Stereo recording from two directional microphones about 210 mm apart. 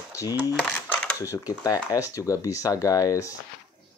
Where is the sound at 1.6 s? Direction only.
15° left (ahead or behind).